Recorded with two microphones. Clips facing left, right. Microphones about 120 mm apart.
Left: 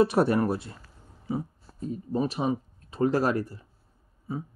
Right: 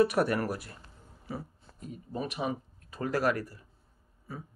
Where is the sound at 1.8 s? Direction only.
30° left (ahead or behind).